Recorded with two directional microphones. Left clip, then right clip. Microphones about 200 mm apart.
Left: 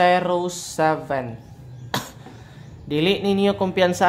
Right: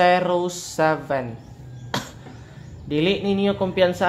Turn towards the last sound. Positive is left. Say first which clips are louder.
# left 1 dB
turn(degrees=20)  # may be behind; listen again after turning